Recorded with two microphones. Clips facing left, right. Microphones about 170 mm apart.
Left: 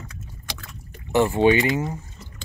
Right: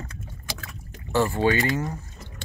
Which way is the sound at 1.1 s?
20° left (ahead or behind).